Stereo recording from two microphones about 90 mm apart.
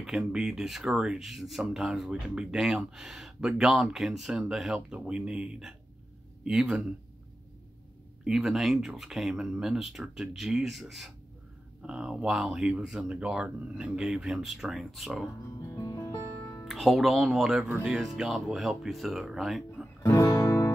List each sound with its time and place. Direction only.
0.3 s speech: 5° right (ahead or behind)
8.2 s speech: 5° right (ahead or behind)
15.6 s music: 40° left (ahead or behind)
16.6 s speech: centre (ahead or behind)
20.0 s music: 35° left (ahead or behind)